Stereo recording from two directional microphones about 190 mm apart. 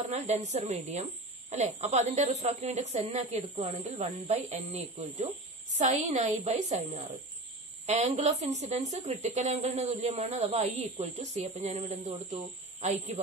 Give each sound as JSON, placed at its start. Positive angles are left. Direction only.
{"t": 0.0, "sound": "speech", "side_deg": -40}